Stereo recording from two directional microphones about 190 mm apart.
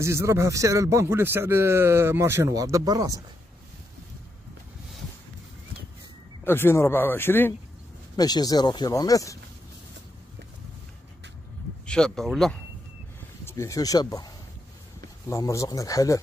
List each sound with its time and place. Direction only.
0.0 s a man's voice: 15° right (ahead or behind)
6.4 s speech: 10° left (ahead or behind)
11.8 s speech: 5° left (ahead or behind)
13.5 s speech: 15° left (ahead or behind)